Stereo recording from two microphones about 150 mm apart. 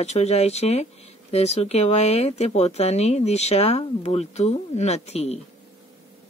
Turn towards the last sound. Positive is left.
turn(degrees=45)  # may be behind; listen again after turning